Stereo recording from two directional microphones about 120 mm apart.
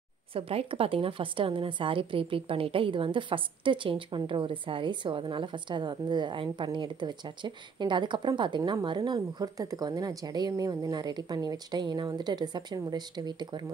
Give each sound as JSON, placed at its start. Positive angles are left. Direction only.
{"t": 0.3, "sound": "a woman's voice", "side_deg": -50}